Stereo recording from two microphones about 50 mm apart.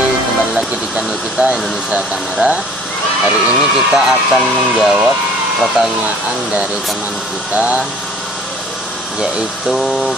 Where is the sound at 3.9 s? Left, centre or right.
Centre.